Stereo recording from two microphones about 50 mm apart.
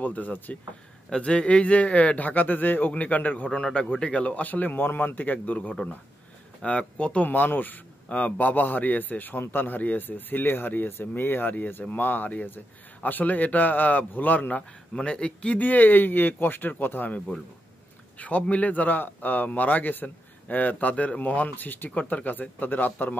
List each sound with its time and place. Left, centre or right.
0.0 s a man's voice: left
1.1 s a man's voice: left
7.2 s a man's voice: left
15.0 s speech: centre
15.6 s a man's voice: left
18.1 s a man's voice: left
21.5 s a man's voice: left